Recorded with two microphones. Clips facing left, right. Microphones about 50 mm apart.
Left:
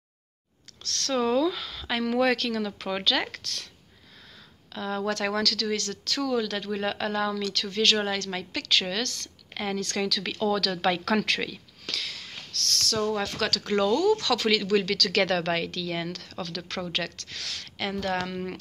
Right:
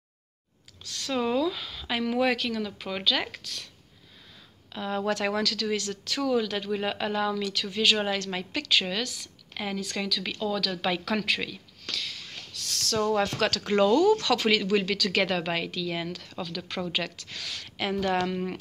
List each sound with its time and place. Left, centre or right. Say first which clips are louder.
0.8 s speech: left 2 dB; centre
4.7 s speech: even; centre
12.4 s a sound: left 7 dB; centre
12.8 s speech: right 3 dB; right; by 18.3 s centre
18.3 s speech: right 2 dB; centre